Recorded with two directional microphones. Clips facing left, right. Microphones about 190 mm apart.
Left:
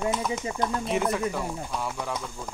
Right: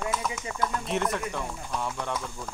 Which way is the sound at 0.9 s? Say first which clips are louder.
Left 4 dB; centre (ahead or behind).